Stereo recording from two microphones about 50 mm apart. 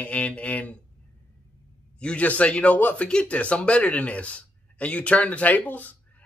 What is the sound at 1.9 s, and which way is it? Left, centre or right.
Speech, left.